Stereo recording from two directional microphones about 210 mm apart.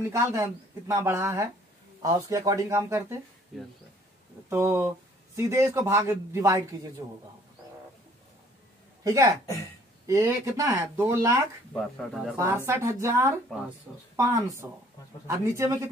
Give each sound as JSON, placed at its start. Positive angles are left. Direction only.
{"t": 0.0, "sound": "a man's voice", "side_deg": -15}
{"t": 4.5, "sound": "a man's voice", "side_deg": -10}
{"t": 9.0, "sound": "a man's voice", "side_deg": -15}
{"t": 11.7, "sound": "speech", "side_deg": 0}
{"t": 12.6, "sound": "a man's voice", "side_deg": -15}
{"t": 13.5, "sound": "speech", "side_deg": 0}
{"t": 14.1, "sound": "a man's voice", "side_deg": -15}